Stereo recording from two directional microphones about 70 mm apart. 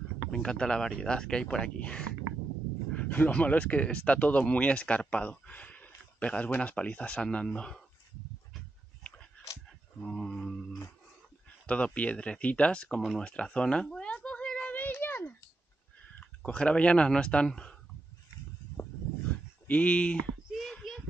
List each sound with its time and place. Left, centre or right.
0.3 s speech: centre
10.0 s mantra: centre
11.6 s speech: centre
13.2 s a sound: centre
14.7 s a sound: left
16.2 s speech: centre
19.7 s speech: centre
20.7 s child singing: centre